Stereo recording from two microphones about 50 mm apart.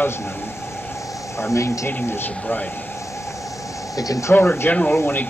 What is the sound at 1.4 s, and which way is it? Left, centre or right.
Speech, left.